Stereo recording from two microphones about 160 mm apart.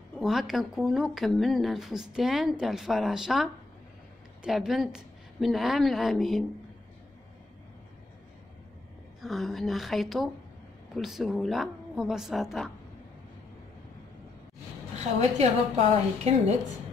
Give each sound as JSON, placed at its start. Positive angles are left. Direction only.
{"t": 0.2, "sound": "a woman's voice", "side_deg": 0}
{"t": 9.2, "sound": "speech", "side_deg": 0}
{"t": 15.1, "sound": "a woman's voice", "side_deg": -40}